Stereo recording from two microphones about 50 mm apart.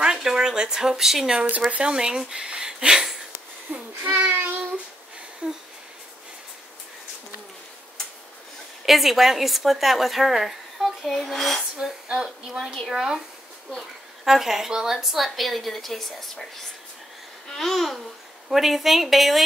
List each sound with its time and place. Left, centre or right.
0.0 s speech: centre
1.7 s speech: right
3.7 s a sound: right
4.4 s child singing: right
5.4 s a sound: right
8.8 s a woman's voice: centre
12.1 s speech: centre
14.2 s a woman's voice: centre
17.5 s a woman's voice: centre